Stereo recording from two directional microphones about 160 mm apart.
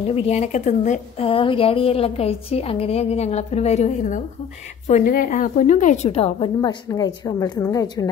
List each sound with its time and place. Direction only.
0.0 s speech: 40° left (ahead or behind)
1.2 s a woman's voice: 35° left (ahead or behind)